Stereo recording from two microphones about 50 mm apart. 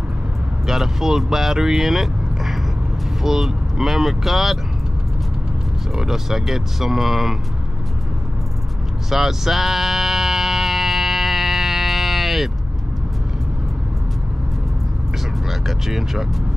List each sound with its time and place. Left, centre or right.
0.7 s speech: centre
5.9 s speech: centre
9.1 s a sound: centre
15.6 s speech: centre